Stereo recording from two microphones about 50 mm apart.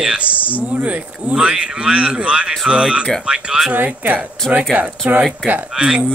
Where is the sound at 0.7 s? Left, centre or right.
Right.